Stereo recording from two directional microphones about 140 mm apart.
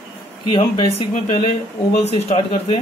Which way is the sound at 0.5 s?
35° left (ahead or behind).